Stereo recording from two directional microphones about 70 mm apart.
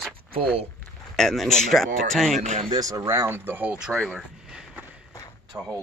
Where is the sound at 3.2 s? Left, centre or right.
Right.